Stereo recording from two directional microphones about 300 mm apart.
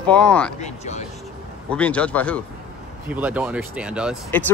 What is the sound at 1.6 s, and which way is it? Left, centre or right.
Speech, centre.